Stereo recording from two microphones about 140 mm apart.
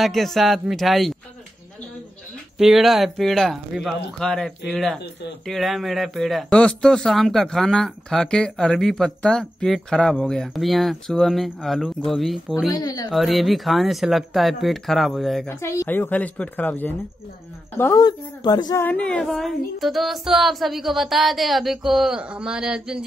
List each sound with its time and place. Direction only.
0.0 s speech: centre (ahead or behind)
2.5 s speech: 5° right (ahead or behind)
12.7 s speech: 25° left (ahead or behind)
13.1 s speech: centre (ahead or behind)
15.4 s speech: 20° left (ahead or behind)
18.0 s speech: 30° left (ahead or behind)
18.8 s speech: 10° left (ahead or behind); by 23.0 s 5° right (ahead or behind)